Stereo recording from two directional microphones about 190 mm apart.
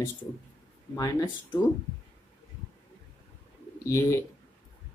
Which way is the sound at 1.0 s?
20° left (ahead or behind).